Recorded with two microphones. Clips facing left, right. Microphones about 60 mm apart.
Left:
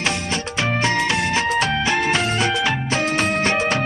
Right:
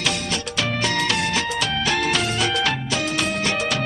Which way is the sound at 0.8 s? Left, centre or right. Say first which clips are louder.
Left 2 dB; left.